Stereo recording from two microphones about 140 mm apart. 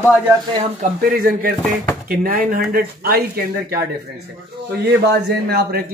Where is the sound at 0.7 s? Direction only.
85° right.